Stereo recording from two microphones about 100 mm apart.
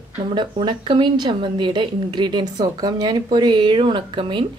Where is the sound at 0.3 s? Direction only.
50° right (ahead or behind).